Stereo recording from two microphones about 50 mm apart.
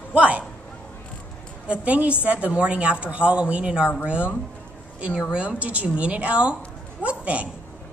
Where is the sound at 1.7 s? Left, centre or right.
Right.